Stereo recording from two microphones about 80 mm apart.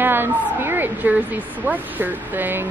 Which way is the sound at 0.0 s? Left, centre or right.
Right.